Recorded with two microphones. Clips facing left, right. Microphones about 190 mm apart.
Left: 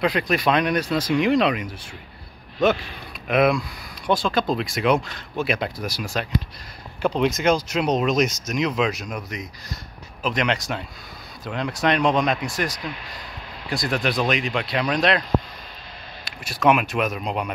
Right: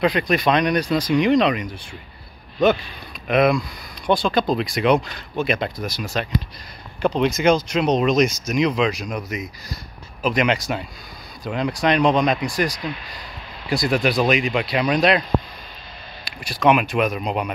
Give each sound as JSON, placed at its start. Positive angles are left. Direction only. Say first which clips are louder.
{"t": 0.0, "sound": "speech", "louder": "right 2 dB", "side_deg": 0}
{"t": 3.3, "sound": "speech", "louder": "right 2 dB", "side_deg": 5}
{"t": 16.4, "sound": "speech", "louder": "right 2 dB", "side_deg": 0}